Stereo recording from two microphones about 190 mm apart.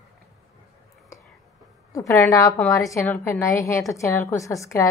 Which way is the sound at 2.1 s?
15° left (ahead or behind).